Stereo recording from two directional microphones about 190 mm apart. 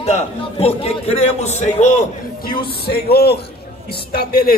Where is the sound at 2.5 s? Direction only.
55° left (ahead or behind).